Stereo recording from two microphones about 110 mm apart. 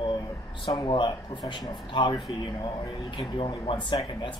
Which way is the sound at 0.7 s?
45° left (ahead or behind).